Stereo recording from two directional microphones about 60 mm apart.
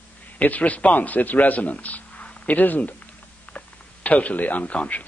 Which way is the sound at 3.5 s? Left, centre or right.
Left.